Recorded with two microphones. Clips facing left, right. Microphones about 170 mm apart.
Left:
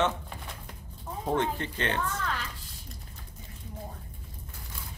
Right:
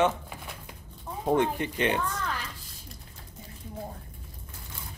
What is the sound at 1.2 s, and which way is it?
Speech, 15° right (ahead or behind).